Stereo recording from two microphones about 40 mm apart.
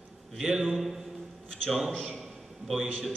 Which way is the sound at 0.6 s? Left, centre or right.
Centre.